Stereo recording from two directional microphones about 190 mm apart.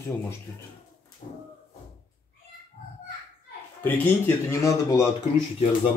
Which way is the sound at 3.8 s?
10° left (ahead or behind).